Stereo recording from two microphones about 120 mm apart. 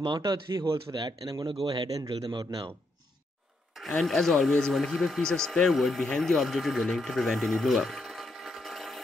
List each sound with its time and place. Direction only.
0.0 s speech: 40° right (ahead or behind)
3.7 s speech: centre (ahead or behind)